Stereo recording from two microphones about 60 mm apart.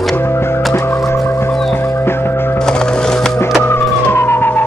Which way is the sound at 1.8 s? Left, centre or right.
Left.